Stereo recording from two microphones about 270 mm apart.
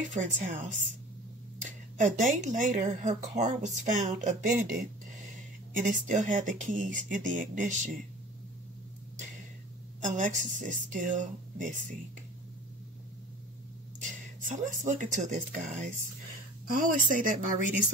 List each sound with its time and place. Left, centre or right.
0.0 s speech: right
5.7 s speech: right
10.1 s speech: right
14.0 s speech: right